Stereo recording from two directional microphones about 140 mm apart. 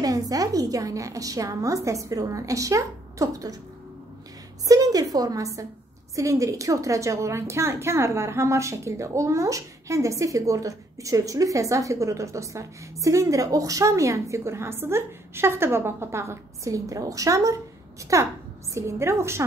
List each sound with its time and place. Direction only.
0.0 s a woman's voice: 25° right (ahead or behind)
4.6 s a woman's voice: 25° right (ahead or behind)